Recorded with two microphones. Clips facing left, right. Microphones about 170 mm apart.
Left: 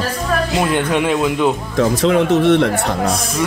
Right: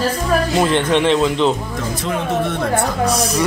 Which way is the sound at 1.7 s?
90° left.